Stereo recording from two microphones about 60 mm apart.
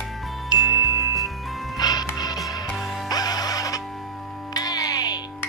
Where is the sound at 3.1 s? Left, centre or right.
Left.